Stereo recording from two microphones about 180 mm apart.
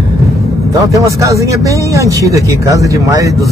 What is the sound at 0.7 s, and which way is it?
Speech, 15° right (ahead or behind).